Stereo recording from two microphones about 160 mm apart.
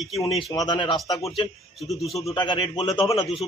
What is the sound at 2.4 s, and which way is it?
Speech, 30° left (ahead or behind).